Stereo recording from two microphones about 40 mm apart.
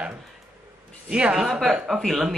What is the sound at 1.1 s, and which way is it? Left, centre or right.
Speech, right.